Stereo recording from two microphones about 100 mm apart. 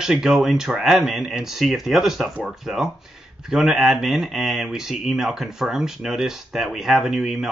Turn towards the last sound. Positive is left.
turn(degrees=-5)  # may be behind; listen again after turning